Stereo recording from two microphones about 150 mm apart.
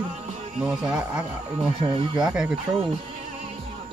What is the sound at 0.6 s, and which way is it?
Speech, 5° right (ahead or behind).